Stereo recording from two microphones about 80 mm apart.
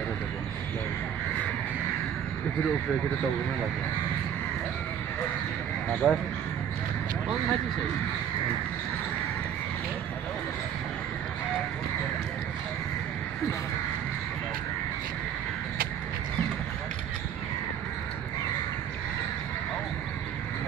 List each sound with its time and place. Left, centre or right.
6.0 s a man's voice: centre